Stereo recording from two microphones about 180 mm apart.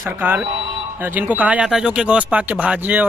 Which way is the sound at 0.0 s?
10° right (ahead or behind).